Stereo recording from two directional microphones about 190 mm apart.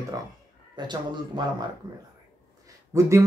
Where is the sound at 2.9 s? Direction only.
15° right (ahead or behind).